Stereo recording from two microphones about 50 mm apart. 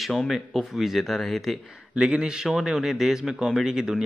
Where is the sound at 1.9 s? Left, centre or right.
Centre.